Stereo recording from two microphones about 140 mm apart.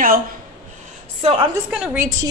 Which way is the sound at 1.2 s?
40° right (ahead or behind).